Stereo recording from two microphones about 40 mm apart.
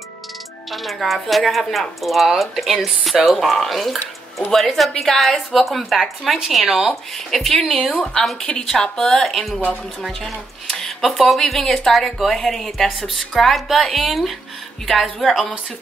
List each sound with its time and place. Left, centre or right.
0.7 s speech: centre
7.2 s speech: centre
8.0 s speech: centre